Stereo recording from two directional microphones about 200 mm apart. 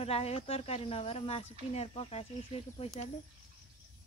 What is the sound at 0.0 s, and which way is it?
Speech, 30° left (ahead or behind).